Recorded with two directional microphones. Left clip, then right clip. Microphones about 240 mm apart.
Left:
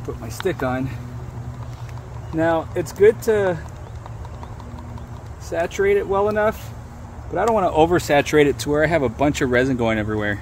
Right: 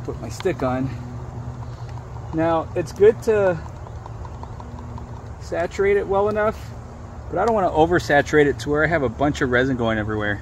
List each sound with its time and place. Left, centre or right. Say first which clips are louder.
0.5 s speech: even; centre
2.3 s speech: left 1 dB; left
5.5 s speech: left 1 dB; centre
7.3 s speech: left 1 dB; centre